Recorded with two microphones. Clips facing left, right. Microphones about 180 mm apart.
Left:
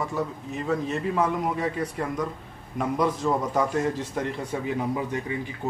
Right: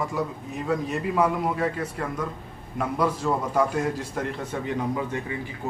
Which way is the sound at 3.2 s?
Centre (ahead or behind).